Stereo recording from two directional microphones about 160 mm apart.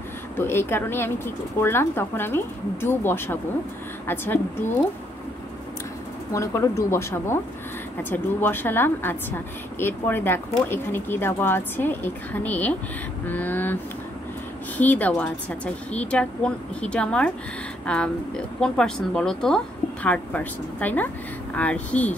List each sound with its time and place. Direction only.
0.4 s speech: 15° left (ahead or behind)
6.3 s speech: 20° left (ahead or behind)
14.8 s speech: 10° left (ahead or behind)